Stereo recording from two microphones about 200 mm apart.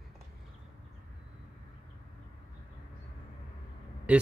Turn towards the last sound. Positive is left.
turn(degrees=-5)  # may be behind; listen again after turning